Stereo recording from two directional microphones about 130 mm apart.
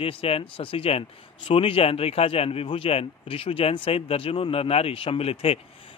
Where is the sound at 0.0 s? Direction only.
45° left (ahead or behind).